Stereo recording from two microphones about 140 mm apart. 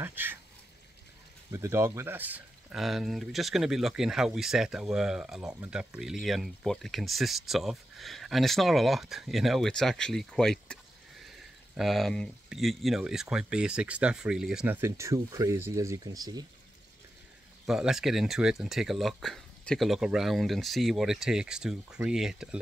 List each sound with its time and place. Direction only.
0.0 s speech: 15° right (ahead or behind)
1.5 s speech: 20° right (ahead or behind)
2.7 s speech: centre (ahead or behind)
14.8 s speech: 20° right (ahead or behind)
17.6 s speech: 5° right (ahead or behind)